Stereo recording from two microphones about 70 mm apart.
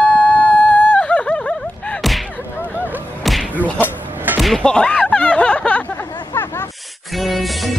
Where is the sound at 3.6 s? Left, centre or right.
Left.